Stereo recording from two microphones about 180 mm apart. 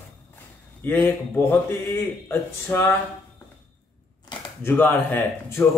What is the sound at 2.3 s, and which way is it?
Speech, 15° left (ahead or behind).